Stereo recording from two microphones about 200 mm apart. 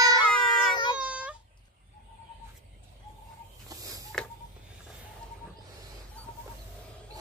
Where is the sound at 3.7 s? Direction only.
20° right (ahead or behind).